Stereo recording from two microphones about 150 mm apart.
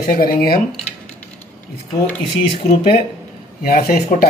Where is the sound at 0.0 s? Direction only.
75° left (ahead or behind).